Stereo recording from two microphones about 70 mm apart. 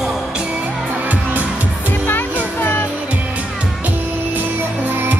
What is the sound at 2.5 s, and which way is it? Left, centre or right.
Music, left.